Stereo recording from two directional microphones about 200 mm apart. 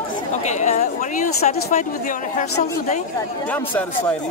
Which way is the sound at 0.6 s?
35° left (ahead or behind).